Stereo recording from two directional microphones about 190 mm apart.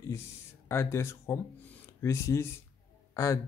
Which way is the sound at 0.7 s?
15° left (ahead or behind).